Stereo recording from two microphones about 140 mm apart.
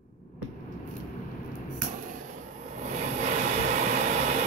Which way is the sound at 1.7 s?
65° right (ahead or behind).